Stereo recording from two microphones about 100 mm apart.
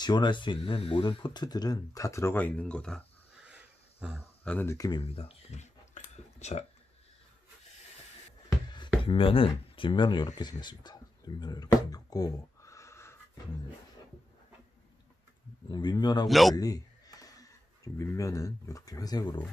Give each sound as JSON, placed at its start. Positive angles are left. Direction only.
{"t": 0.0, "sound": "speech", "side_deg": 45}
{"t": 2.3, "sound": "speech", "side_deg": 15}
{"t": 3.4, "sound": "a sound", "side_deg": -10}
{"t": 4.6, "sound": "speech", "side_deg": 35}
{"t": 5.0, "sound": "speech", "side_deg": 70}
{"t": 8.6, "sound": "a sound", "side_deg": 50}
{"t": 9.0, "sound": "speech", "side_deg": 65}
{"t": 10.2, "sound": "speech", "side_deg": 40}
{"t": 15.7, "sound": "speech", "side_deg": 45}
{"t": 16.3, "sound": "a man's voice", "side_deg": 0}
{"t": 16.5, "sound": "speech", "side_deg": 40}